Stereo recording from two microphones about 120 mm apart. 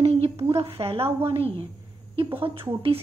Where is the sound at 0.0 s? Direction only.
55° right (ahead or behind).